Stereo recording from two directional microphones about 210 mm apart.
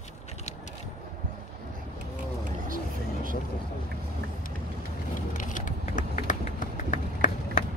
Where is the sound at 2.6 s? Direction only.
40° right (ahead or behind).